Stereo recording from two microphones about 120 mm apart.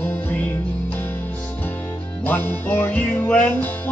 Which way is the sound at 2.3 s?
15° left (ahead or behind).